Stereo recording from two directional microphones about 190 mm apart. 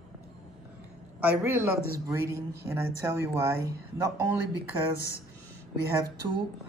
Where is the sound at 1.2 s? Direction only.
10° right (ahead or behind).